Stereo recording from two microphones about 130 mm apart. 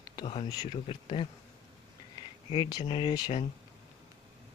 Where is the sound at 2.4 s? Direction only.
35° left (ahead or behind).